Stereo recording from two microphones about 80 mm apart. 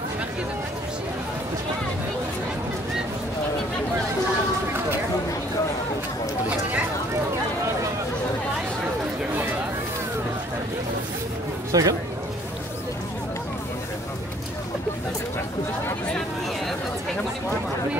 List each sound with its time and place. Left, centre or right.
11.7 s speech: right